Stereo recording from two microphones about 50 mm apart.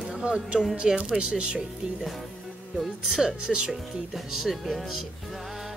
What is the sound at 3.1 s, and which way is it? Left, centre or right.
Speech, centre.